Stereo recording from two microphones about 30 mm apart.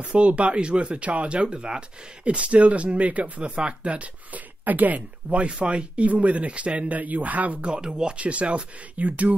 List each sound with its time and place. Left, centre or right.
0.1 s speech: right
2.2 s speech: right
5.3 s speech: right
7.6 s speech: right
8.2 s speech: right
9.0 s speech: right